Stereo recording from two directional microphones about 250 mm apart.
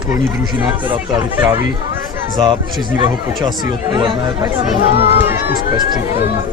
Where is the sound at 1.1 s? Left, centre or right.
Centre.